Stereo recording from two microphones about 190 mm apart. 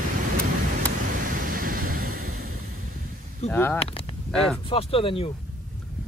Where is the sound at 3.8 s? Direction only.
30° left (ahead or behind).